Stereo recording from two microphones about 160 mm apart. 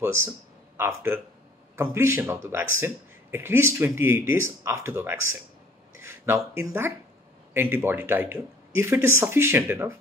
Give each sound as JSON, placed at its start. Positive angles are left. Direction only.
{"t": 0.0, "sound": "speech", "side_deg": -15}
{"t": 5.9, "sound": "a sound", "side_deg": -15}
{"t": 6.6, "sound": "speech", "side_deg": -15}